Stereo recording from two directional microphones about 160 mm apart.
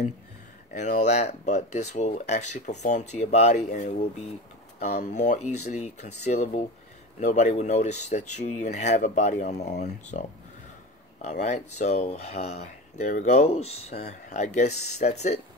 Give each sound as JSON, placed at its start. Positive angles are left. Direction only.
{"t": 0.7, "sound": "speech", "side_deg": 45}
{"t": 11.2, "sound": "speech", "side_deg": 50}